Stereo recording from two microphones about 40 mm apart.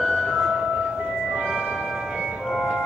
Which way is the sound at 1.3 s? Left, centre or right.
Centre.